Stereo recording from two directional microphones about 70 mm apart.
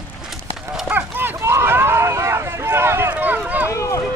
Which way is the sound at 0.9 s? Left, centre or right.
Right.